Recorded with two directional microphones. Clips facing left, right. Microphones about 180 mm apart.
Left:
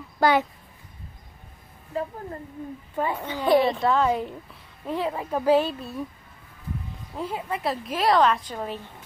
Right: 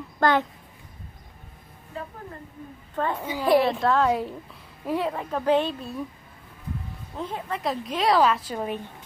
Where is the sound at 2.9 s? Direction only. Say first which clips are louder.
Even; 10° left (ahead or behind).